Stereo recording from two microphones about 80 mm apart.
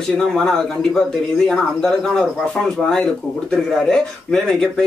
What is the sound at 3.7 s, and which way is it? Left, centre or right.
Speech, centre.